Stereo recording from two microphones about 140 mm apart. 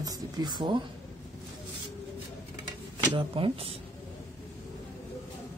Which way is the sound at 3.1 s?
40° right (ahead or behind).